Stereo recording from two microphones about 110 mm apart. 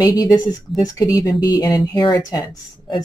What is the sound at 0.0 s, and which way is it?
Speech, 35° left (ahead or behind).